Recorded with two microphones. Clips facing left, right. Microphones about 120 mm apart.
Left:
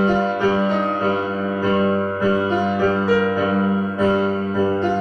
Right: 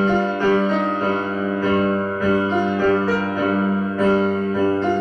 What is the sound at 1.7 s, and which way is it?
Music, 15° left (ahead or behind).